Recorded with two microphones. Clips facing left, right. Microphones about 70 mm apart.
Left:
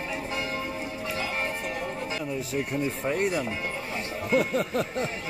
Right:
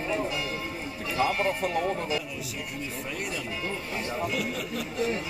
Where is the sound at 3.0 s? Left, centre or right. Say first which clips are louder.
Left 9 dB; left.